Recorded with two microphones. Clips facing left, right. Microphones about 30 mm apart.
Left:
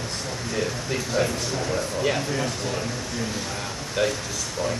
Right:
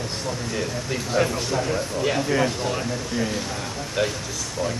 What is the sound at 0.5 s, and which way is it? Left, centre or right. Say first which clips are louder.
Speech: left 4 dB; centre.